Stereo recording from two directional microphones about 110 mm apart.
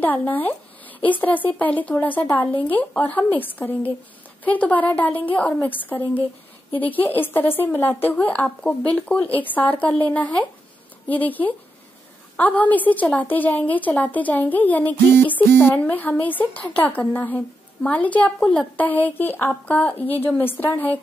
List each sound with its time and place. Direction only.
0.0 s a woman's voice: 15° left (ahead or behind)